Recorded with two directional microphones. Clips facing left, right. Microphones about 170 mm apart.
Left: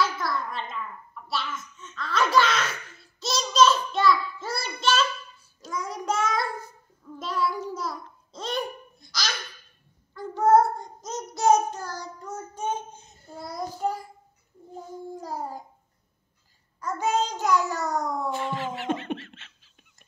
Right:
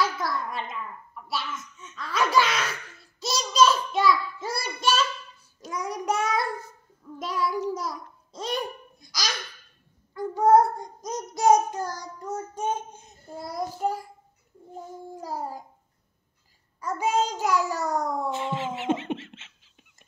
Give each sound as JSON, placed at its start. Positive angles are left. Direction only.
{"t": 0.0, "sound": "babbling", "side_deg": -10}
{"t": 1.2, "sound": "a child's voice", "side_deg": -10}
{"t": 3.2, "sound": "child singing", "side_deg": -10}
{"t": 7.7, "sound": "babbling", "side_deg": -10}
{"t": 10.1, "sound": "child singing", "side_deg": -15}
{"t": 13.5, "sound": "child singing", "side_deg": -5}
{"t": 15.1, "sound": "a child's voice", "side_deg": -5}
{"t": 16.8, "sound": "a child's voice", "side_deg": -10}
{"t": 18.3, "sound": "a sound", "side_deg": -20}